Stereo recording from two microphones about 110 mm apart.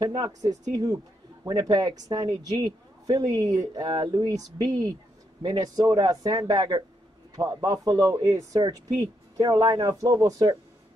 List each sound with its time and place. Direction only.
0.0 s a man's voice: 35° right (ahead or behind)